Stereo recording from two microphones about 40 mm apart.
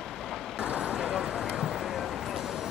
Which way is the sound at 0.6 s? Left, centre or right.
Right.